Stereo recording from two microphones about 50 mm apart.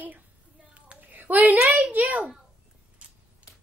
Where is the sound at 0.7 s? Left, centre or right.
Right.